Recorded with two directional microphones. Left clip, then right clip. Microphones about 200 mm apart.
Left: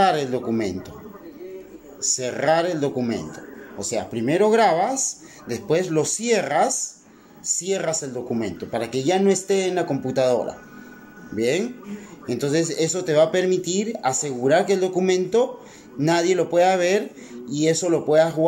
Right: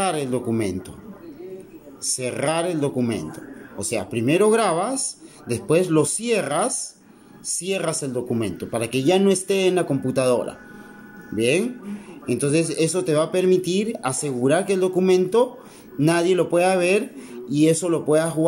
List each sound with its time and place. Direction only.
0.0 s speech: 10° right (ahead or behind)
2.1 s speech: 10° right (ahead or behind)